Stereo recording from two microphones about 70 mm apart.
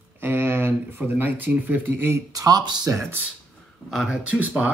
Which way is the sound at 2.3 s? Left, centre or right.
Right.